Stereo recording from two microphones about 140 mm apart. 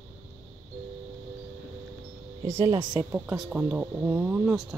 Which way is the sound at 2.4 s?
20° right (ahead or behind).